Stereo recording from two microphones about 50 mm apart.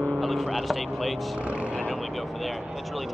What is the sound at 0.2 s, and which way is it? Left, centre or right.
Speech, centre.